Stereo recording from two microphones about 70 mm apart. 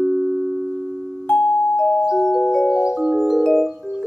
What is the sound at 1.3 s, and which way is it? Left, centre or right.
Music, left.